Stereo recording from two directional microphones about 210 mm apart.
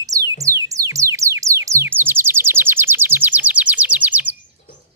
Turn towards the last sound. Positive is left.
turn(degrees=-5)  # may be behind; listen again after turning